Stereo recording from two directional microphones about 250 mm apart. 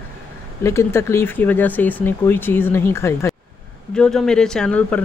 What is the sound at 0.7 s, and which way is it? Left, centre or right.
Speech, centre.